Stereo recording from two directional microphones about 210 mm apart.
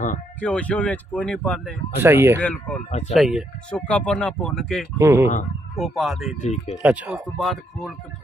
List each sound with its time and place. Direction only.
0.4 s speech: 5° left (ahead or behind)
2.0 s speech: 10° right (ahead or behind)
2.4 s speech: 5° left (ahead or behind)
2.9 s speech: 35° left (ahead or behind)
3.2 s speech: centre (ahead or behind)
4.9 s speech: 15° right (ahead or behind)
5.8 s speech: centre (ahead or behind)
6.3 s speech: 35° left (ahead or behind)
6.8 s speech: 5° right (ahead or behind)